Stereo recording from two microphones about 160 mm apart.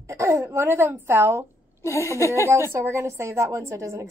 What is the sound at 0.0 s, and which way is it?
A woman's voice, 20° right (ahead or behind).